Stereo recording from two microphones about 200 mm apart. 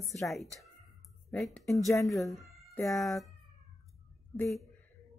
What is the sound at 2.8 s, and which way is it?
Speech, centre (ahead or behind).